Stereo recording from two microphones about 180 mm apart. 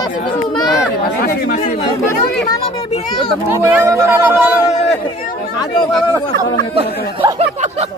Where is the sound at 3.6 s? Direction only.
15° right (ahead or behind).